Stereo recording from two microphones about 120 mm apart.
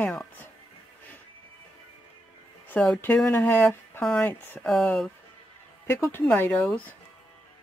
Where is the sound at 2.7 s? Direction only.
10° left (ahead or behind).